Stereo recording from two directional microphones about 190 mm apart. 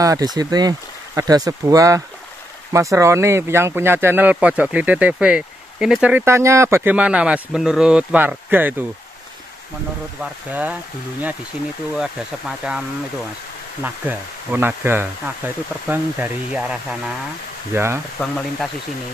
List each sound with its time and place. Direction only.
0.0 s speech: 20° right (ahead or behind)
10.2 s speech: 5° right (ahead or behind)
13.8 s speech: 10° right (ahead or behind)
17.7 s speech: 15° right (ahead or behind)
18.2 s speech: 5° left (ahead or behind)